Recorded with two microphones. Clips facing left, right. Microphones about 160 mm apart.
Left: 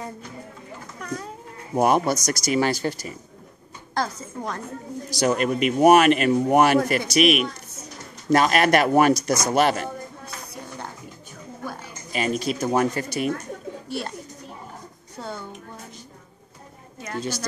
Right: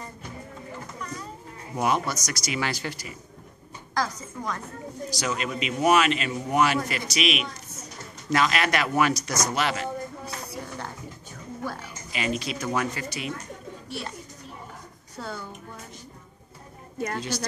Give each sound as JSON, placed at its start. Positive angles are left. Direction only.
{"t": 1.8, "sound": "speech", "side_deg": 50}
{"t": 3.9, "sound": "speech", "side_deg": 30}
{"t": 5.1, "sound": "speech", "side_deg": 50}
{"t": 12.1, "sound": "speech", "side_deg": 45}
{"t": 15.1, "sound": "a sound", "side_deg": 20}
{"t": 17.2, "sound": "speech", "side_deg": 50}